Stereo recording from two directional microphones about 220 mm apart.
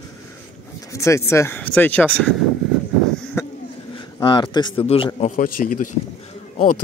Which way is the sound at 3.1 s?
5° left (ahead or behind).